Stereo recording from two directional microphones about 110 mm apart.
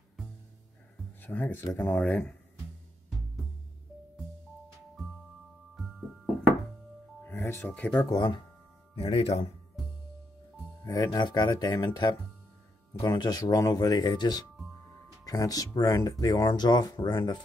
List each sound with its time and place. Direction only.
1.2 s speech: 15° left (ahead or behind)
5.8 s music: centre (ahead or behind)
7.2 s speech: 20° left (ahead or behind)
8.1 s speech: 45° left (ahead or behind)
8.9 s speech: 60° left (ahead or behind)
10.8 s music: 35° left (ahead or behind)
11.1 s speech: 45° left (ahead or behind)